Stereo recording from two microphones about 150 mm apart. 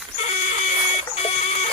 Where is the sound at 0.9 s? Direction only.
45° left (ahead or behind).